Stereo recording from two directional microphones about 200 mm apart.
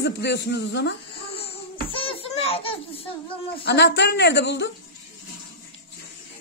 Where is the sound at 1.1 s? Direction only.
30° left (ahead or behind).